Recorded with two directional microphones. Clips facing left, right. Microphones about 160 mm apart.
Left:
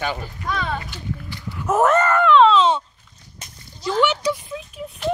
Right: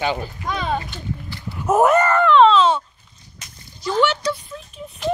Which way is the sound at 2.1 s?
Centre (ahead or behind).